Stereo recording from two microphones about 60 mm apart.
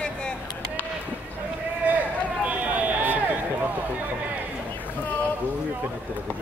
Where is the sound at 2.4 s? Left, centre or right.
Right.